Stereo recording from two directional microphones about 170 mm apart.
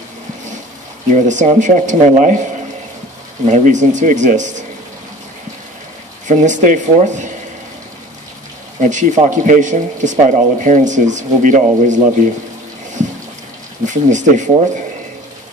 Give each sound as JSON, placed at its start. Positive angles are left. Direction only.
{"t": 1.1, "sound": "speech", "side_deg": -45}
{"t": 3.4, "sound": "speech", "side_deg": -45}
{"t": 6.2, "sound": "speech", "side_deg": -45}
{"t": 8.8, "sound": "speech", "side_deg": -45}
{"t": 13.8, "sound": "speech", "side_deg": -45}